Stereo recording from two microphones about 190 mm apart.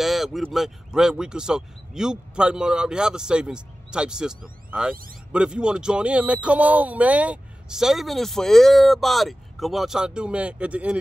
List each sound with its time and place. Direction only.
0.0 s speech: centre (ahead or behind)